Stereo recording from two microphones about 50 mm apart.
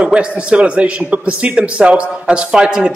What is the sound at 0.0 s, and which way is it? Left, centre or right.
A man's voice, right.